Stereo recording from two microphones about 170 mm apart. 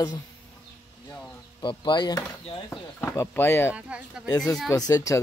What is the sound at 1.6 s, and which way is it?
Speech, 30° left (ahead or behind).